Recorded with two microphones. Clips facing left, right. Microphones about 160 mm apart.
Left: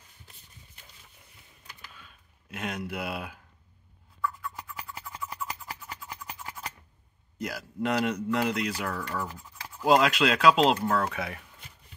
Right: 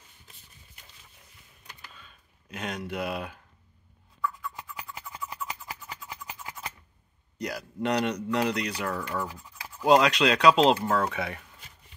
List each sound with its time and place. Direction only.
1.9 s a sound: 5° left (ahead or behind)
5.2 s music: 15° right (ahead or behind)
7.3 s speech: 5° left (ahead or behind)